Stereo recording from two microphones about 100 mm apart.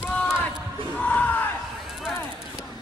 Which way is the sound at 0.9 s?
15° left (ahead or behind).